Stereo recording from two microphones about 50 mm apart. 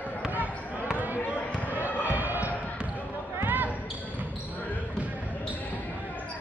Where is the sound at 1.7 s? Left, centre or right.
Right.